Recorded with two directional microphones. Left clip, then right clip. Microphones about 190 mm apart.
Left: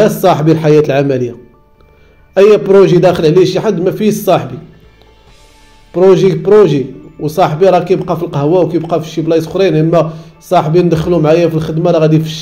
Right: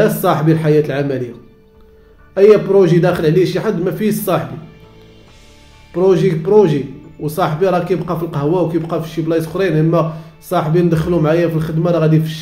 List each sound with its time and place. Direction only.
0.0 s speech: 25° left (ahead or behind)
2.3 s speech: 30° left (ahead or behind)
5.9 s speech: 25° left (ahead or behind)